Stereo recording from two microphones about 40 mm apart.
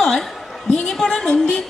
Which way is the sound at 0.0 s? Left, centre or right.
Centre.